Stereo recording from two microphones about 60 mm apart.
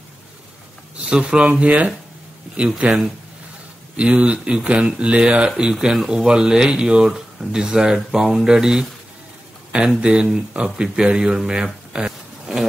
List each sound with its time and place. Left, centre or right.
1.0 s speech: centre